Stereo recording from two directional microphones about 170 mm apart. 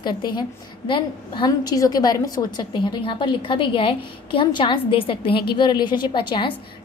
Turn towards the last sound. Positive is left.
turn(degrees=30)  # may be behind; listen again after turning